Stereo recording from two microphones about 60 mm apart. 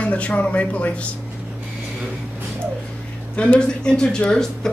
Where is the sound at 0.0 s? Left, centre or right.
Centre.